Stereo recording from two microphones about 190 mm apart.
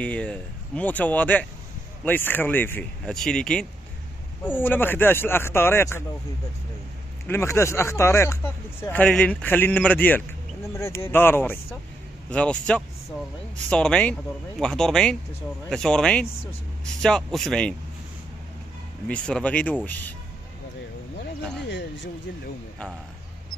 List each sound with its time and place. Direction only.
0.0 s speech: 5° left (ahead or behind)
7.2 s a man's voice: 15° left (ahead or behind)
19.0 s speech: 5° left (ahead or behind)
21.6 s a sound: 70° left (ahead or behind)